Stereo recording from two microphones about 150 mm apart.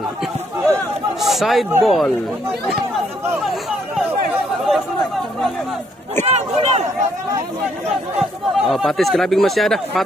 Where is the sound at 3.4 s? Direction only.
Centre (ahead or behind).